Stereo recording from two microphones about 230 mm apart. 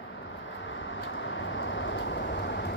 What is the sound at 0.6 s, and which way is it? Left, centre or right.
Vehicle, left.